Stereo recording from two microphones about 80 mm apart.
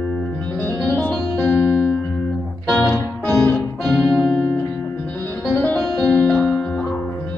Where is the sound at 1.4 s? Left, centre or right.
Left.